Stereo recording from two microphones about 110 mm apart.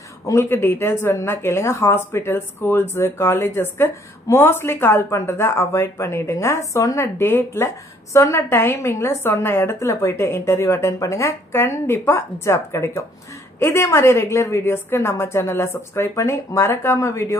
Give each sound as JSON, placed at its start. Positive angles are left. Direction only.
{"t": 0.2, "sound": "a woman's voice", "side_deg": 25}